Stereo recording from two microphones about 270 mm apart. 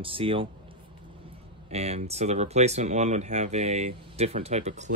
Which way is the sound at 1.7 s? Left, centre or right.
Right.